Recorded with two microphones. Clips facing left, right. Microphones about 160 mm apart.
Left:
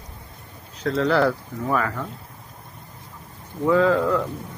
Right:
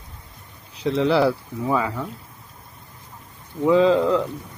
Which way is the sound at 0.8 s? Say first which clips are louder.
Right 1 dB; 15° right (ahead or behind).